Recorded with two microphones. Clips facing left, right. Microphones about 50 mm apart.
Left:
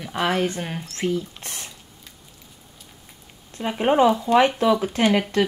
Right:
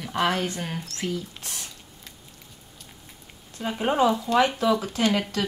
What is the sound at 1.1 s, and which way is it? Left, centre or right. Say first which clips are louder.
Speech: left 5 dB; left.